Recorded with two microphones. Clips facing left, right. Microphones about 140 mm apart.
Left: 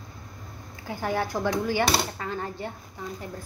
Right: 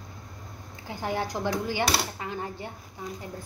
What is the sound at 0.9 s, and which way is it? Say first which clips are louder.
Speech: left 2 dB; 20° right (ahead or behind).